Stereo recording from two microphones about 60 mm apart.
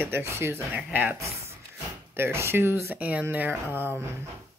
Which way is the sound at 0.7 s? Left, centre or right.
Right.